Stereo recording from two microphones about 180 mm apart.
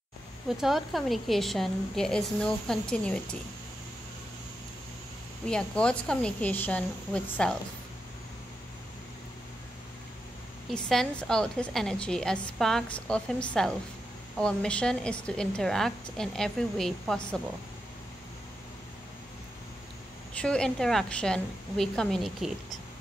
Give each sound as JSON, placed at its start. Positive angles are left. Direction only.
{"t": 0.5, "sound": "a woman's voice", "side_deg": 0}
{"t": 5.5, "sound": "a woman's voice", "side_deg": 5}
{"t": 10.7, "sound": "a woman's voice", "side_deg": 5}
{"t": 20.3, "sound": "a woman's voice", "side_deg": 5}